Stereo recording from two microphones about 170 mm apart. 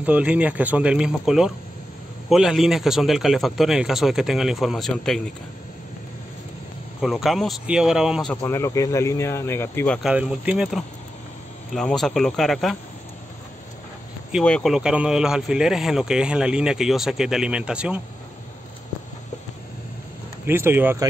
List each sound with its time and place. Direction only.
0.0 s speech: 10° right (ahead or behind)
7.0 s speech: centre (ahead or behind)
8.5 s speech: 15° left (ahead or behind)
10.0 s speech: 5° right (ahead or behind)
14.3 s speech: 5° left (ahead or behind)
20.4 s speech: 15° right (ahead or behind)